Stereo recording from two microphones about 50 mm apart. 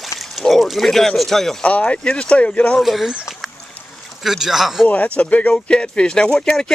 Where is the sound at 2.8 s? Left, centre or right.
Centre.